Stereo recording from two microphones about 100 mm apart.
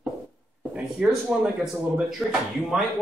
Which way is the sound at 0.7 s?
10° right (ahead or behind).